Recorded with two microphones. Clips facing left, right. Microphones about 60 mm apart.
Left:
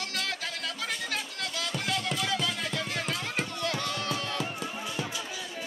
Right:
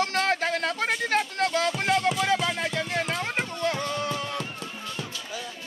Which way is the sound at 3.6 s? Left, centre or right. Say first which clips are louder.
Right 6 dB; right.